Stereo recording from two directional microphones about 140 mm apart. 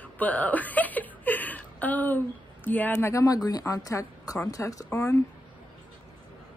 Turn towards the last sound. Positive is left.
turn(degrees=20)  # may be behind; listen again after turning